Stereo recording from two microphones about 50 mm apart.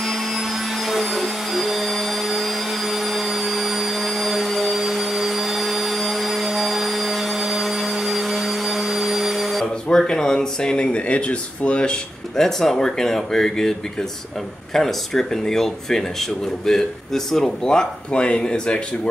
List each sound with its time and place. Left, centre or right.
0.0 s vacuum cleaner: centre
9.8 s speech: centre
12.4 s speech: centre